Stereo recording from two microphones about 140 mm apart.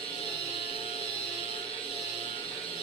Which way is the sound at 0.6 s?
40° left (ahead or behind).